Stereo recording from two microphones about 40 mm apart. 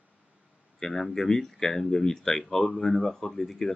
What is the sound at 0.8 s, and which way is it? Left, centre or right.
Speech, centre.